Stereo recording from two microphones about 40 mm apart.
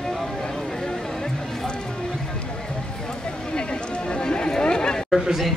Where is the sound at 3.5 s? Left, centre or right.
Left.